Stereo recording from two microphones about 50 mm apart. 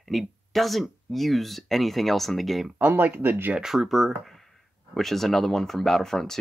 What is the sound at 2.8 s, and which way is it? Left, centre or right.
Speech, right.